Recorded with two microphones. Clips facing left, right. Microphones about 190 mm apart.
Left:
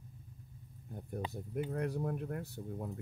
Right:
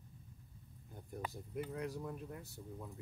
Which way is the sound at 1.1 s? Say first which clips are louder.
Left 4 dB; 55° left (ahead or behind).